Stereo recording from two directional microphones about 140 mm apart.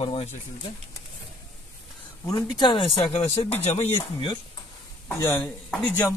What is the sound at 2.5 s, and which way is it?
Speech, 35° left (ahead or behind).